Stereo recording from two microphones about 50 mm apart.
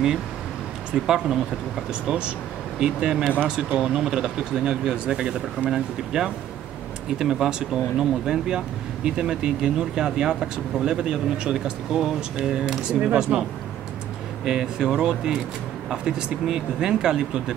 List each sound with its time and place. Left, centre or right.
0.9 s speech: centre